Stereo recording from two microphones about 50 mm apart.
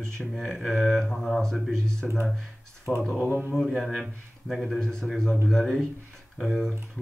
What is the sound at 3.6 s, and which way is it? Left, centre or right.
A man's voice, centre.